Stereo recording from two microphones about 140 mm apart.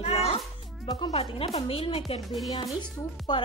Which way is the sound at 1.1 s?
45° left (ahead or behind).